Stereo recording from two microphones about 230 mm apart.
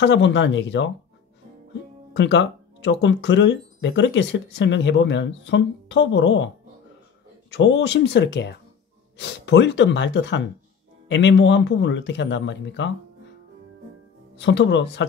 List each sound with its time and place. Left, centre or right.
0.0 s speech: left
2.1 s speech: left
7.5 s speech: left
14.4 s speech: left